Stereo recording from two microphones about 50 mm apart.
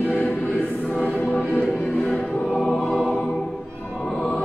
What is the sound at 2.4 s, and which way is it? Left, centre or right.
Choir, centre.